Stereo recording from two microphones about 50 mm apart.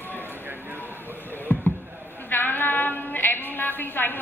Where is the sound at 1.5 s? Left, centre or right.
Left.